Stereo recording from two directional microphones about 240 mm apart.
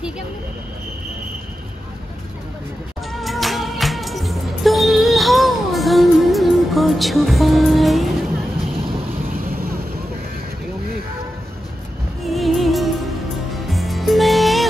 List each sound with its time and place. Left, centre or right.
3.1 s music: centre
9.3 s vehicle: right
12.3 s music: centre